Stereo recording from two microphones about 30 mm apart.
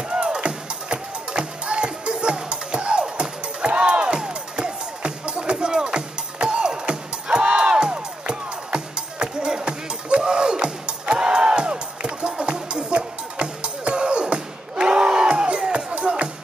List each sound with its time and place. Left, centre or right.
0.1 s music: right